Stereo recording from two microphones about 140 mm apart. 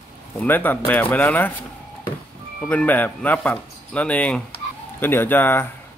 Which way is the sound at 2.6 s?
10° left (ahead or behind).